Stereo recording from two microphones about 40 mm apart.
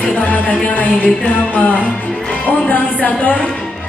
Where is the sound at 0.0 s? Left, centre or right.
Left.